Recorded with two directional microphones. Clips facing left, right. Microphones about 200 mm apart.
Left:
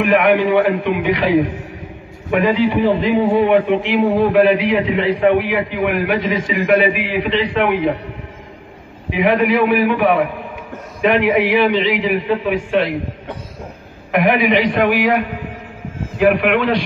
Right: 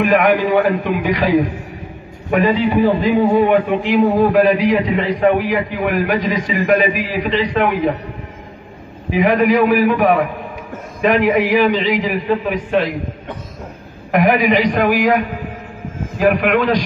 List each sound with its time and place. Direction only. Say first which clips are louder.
0.0 s a man's voice: even; 40° right (ahead or behind)
2.7 s a man's voice: right 1 dB; 40° right (ahead or behind)
9.1 s a man's voice: right 1 dB; 40° right (ahead or behind)
14.1 s a man's voice: right 1 dB; 40° right (ahead or behind)